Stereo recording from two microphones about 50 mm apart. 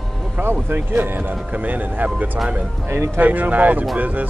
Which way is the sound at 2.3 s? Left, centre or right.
Centre.